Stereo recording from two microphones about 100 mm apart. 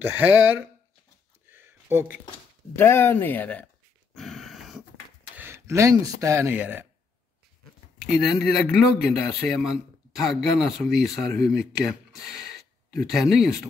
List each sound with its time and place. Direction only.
0.0 s speech: 20° right (ahead or behind)
1.5 s a sound: 25° right (ahead or behind)
2.7 s speech: 20° left (ahead or behind)
4.1 s dog: 5° left (ahead or behind)
5.3 s speech: 20° right (ahead or behind)
6.5 s speech: 20° right (ahead or behind)
8.1 s speech: centre (ahead or behind)